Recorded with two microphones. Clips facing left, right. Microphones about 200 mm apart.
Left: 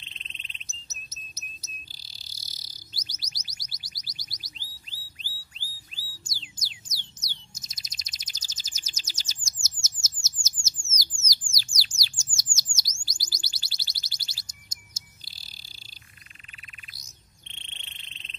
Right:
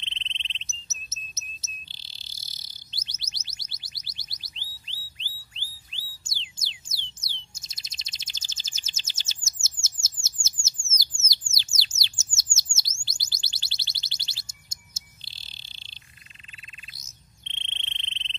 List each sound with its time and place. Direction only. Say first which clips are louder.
0.0 s bird: right 4 dB; 25° right (ahead or behind)
13.0 s music: left 1 dB; 25° right (ahead or behind)
16.9 s cricket: right 1 dB; 20° right (ahead or behind)